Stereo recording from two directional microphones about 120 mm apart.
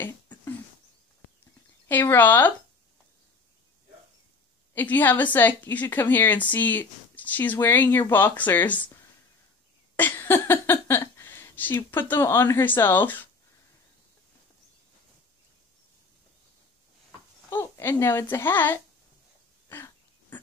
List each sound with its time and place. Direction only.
0.0 s a sound: 15° left (ahead or behind)
1.9 s speech: 15° left (ahead or behind)
4.7 s speech: 15° left (ahead or behind)
9.9 s speech: 15° left (ahead or behind)
17.5 s speech: 20° left (ahead or behind)
19.7 s a sound: 15° left (ahead or behind)